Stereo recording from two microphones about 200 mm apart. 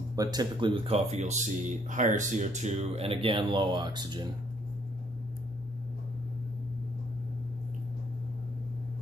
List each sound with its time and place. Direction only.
0.1 s speech: 20° right (ahead or behind)